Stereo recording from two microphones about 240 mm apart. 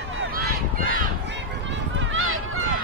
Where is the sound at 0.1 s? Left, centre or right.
Right.